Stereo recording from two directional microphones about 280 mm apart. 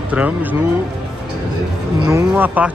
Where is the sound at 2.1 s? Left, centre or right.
Centre.